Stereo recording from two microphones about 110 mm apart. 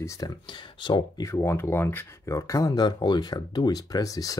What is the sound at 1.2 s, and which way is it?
Speech, 25° left (ahead or behind).